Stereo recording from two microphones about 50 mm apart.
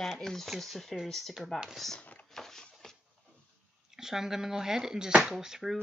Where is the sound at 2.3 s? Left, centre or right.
Centre.